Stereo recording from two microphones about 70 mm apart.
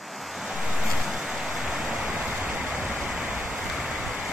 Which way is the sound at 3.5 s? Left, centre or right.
Centre.